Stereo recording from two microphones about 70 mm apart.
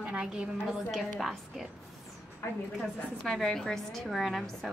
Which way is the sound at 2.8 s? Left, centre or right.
Centre.